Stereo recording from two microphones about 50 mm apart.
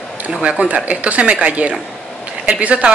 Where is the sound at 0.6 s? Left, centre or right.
Right.